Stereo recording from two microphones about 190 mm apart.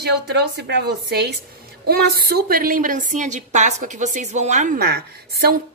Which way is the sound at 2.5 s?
50° right (ahead or behind).